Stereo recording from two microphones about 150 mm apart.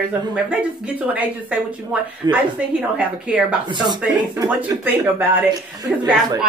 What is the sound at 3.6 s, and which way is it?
Speech, 30° right (ahead or behind).